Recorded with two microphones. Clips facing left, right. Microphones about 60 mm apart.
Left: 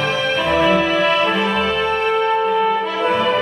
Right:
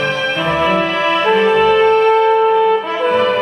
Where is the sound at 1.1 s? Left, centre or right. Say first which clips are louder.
Right 4 dB; right.